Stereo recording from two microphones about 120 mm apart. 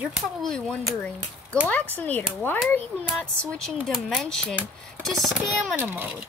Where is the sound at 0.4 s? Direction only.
5° left (ahead or behind).